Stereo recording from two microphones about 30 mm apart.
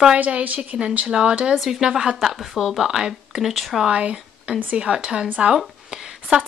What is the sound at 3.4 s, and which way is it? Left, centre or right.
Speech, centre.